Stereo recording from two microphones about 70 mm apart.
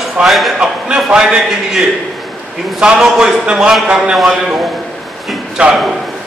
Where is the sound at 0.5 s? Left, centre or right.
Centre.